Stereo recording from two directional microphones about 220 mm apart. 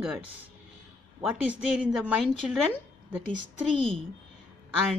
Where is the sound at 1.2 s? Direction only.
5° right (ahead or behind).